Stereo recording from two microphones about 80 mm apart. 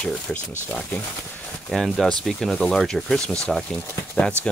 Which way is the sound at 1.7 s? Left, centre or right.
Centre.